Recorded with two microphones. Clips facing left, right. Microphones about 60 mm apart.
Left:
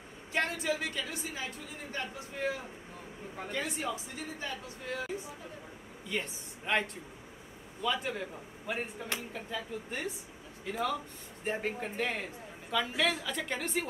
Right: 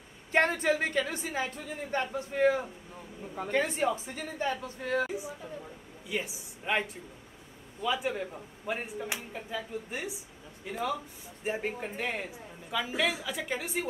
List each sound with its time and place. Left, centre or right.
0.3 s a woman's voice: right
6.0 s a woman's voice: centre
7.8 s a man's voice: centre